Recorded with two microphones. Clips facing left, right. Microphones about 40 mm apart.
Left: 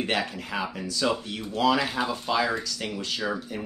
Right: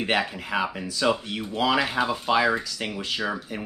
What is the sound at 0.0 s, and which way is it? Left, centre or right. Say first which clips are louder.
Speech: right 3 dB; centre.